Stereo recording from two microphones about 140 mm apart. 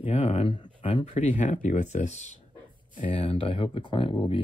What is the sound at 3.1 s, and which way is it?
Speech, 40° left (ahead or behind).